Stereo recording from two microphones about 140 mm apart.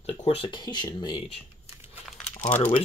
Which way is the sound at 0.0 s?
45° left (ahead or behind).